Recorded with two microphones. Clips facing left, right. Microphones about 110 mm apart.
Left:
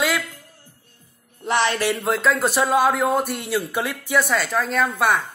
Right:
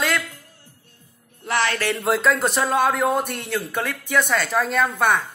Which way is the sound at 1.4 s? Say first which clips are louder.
Left 2 dB; 20° left (ahead or behind).